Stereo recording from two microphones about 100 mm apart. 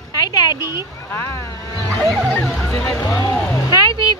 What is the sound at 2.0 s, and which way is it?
Speech, centre (ahead or behind).